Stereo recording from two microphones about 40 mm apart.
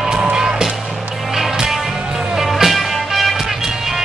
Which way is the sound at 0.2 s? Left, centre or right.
Right.